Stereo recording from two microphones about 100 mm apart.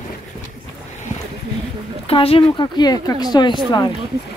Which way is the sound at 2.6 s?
45° left (ahead or behind).